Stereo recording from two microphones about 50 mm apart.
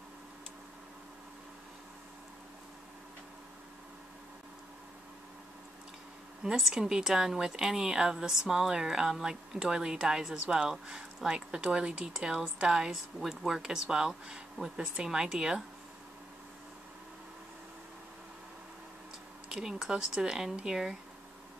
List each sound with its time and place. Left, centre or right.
6.4 s a woman's voice: centre
19.5 s a woman's voice: centre